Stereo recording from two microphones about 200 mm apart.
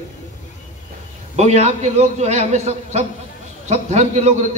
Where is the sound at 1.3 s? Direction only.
35° right (ahead or behind).